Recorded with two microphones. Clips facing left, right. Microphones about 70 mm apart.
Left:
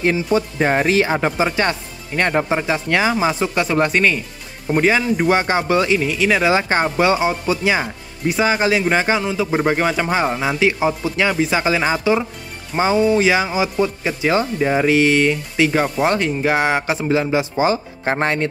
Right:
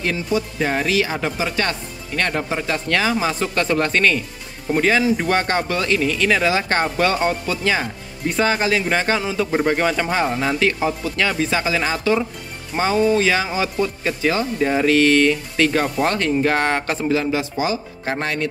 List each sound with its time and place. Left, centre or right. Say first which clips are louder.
0.3 s speech: left 4 dB; left; by 9.2 s centre
9.2 s speech: left 1 dB; centre
9.5 s speech: left 1 dB; centre
17.6 s speech: left 4 dB; left